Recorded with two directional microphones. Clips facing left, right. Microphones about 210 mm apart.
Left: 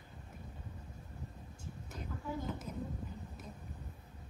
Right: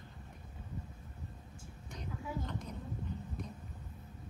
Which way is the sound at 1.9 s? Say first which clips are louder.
Even; 5° left (ahead or behind).